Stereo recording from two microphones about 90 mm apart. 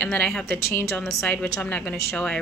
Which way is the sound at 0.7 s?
30° left (ahead or behind).